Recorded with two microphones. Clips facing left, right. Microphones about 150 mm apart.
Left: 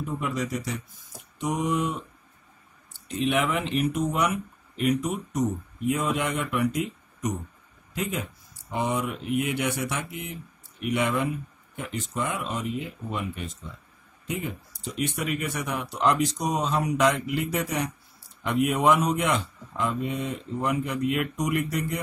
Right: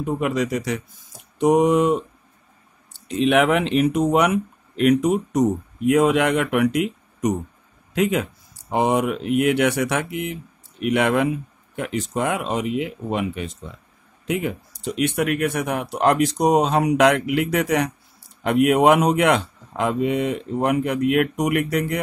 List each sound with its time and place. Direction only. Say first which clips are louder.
0.0 s speech: right 7 dB; 75° right (ahead or behind); by 2.0 s 90° right
3.1 s speech: right 8 dB; 90° right; by 22.0 s 70° right (ahead or behind)